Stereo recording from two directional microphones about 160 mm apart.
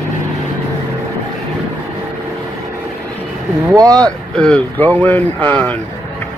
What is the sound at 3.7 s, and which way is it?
Speech, 20° right (ahead or behind).